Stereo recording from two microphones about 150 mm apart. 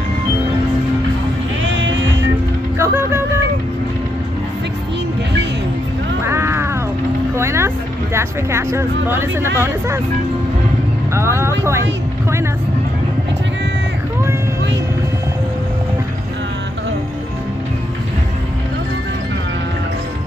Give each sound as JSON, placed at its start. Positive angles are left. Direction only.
{"t": 2.8, "sound": "music", "side_deg": -15}
{"t": 6.2, "sound": "a sound", "side_deg": -15}
{"t": 7.3, "sound": "speech", "side_deg": -20}
{"t": 11.1, "sound": "speech", "side_deg": -20}